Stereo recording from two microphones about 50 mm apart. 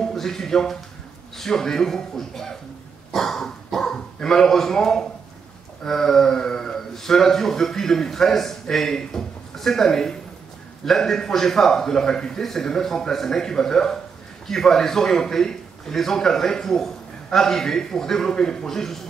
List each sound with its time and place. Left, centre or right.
0.1 s a man's voice: centre
3.1 s dog: centre
5.9 s a man's voice: centre